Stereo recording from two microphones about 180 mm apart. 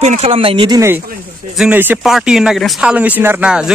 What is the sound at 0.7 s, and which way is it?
Speech, 15° right (ahead or behind).